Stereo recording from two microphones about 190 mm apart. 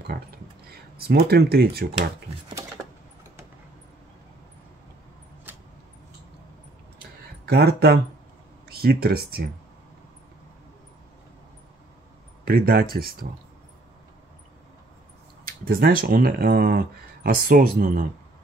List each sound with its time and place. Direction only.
0.7 s speech: 55° right (ahead or behind)
7.4 s speech: 55° right (ahead or behind)
12.4 s speech: 55° right (ahead or behind)
15.6 s speech: 50° right (ahead or behind)